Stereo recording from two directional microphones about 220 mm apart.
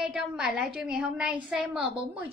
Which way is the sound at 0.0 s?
5° right (ahead or behind).